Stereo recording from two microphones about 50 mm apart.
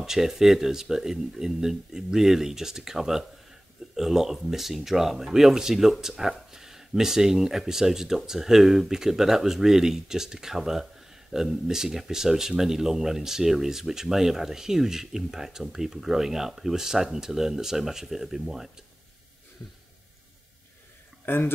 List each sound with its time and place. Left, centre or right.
0.0 s speech: centre
21.3 s speech: left